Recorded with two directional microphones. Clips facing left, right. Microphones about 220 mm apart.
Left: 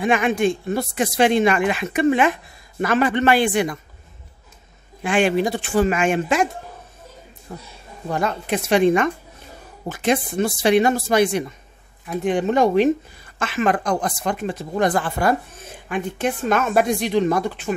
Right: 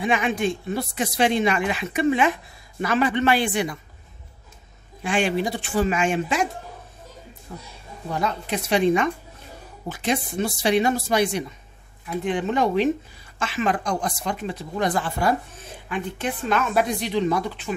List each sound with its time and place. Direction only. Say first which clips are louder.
0.0 s speech: left 4 dB; 50° left (ahead or behind)
5.0 s speech: left 4 dB; 55° left (ahead or behind)